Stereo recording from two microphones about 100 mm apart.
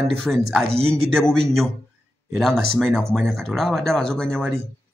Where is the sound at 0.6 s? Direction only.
85° right.